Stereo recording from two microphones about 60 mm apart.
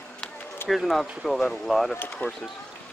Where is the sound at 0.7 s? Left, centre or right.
Centre.